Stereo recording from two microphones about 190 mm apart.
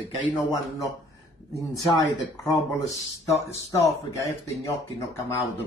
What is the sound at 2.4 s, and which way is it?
Speech, 20° left (ahead or behind).